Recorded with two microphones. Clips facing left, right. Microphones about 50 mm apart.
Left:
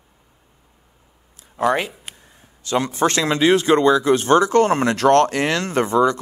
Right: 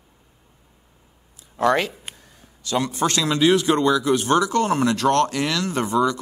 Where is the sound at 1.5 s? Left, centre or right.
Left.